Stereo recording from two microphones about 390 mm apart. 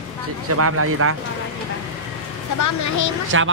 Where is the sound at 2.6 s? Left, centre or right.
Left.